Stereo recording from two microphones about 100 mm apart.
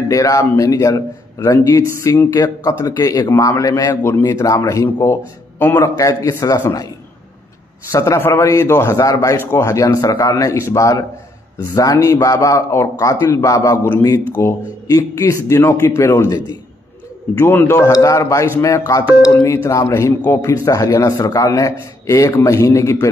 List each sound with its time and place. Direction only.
0.1 s a man's voice: 35° left (ahead or behind)
7.9 s a man's voice: 30° left (ahead or behind)
17.4 s a man's voice: 25° left (ahead or behind)